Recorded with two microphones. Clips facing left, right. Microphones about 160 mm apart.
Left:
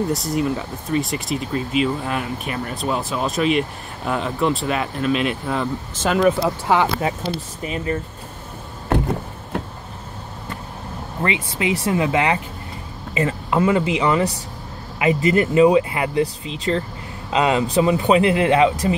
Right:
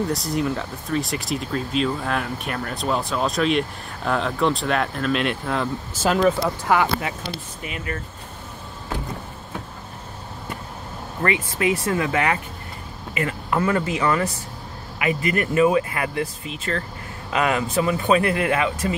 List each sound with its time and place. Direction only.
0.1 s speech: centre (ahead or behind)
6.4 s speech: 25° left (ahead or behind)
8.8 s a sound: 60° left (ahead or behind)
11.2 s speech: 20° left (ahead or behind)